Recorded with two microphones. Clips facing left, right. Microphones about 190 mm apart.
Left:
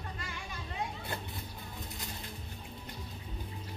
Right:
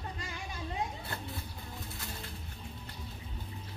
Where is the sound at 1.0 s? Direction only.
15° left (ahead or behind).